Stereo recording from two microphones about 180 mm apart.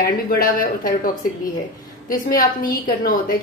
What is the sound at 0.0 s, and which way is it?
A woman's voice, 50° left (ahead or behind).